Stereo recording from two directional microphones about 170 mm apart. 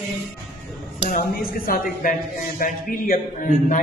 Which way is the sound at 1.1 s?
55° left (ahead or behind).